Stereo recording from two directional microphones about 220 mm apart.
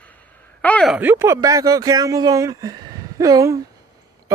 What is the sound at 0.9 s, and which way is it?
Speech, 10° right (ahead or behind).